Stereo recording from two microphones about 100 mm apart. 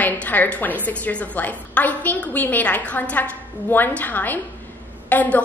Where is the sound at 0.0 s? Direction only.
15° left (ahead or behind).